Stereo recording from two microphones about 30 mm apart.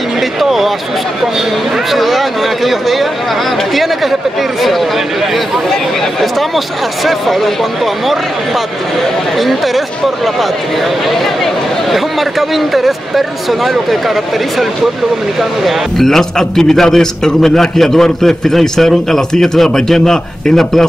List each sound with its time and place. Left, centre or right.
0.2 s a sound: centre
1.9 s speech: centre
16.0 s a man's voice: centre